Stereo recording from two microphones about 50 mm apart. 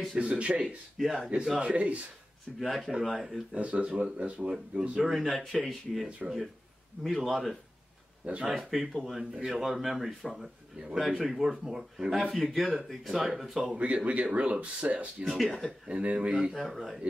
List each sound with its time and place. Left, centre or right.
0.2 s speech: right
0.9 s speech: centre
1.3 s speech: centre
2.6 s speech: centre
3.5 s speech: right
5.6 s speech: centre
8.3 s speech: right
8.9 s speech: centre
9.2 s speech: centre
13.7 s speech: right
15.2 s speech: centre
15.9 s speech: right
16.5 s speech: centre